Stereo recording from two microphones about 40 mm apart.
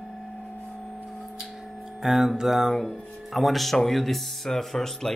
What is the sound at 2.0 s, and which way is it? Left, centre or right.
Speech, centre.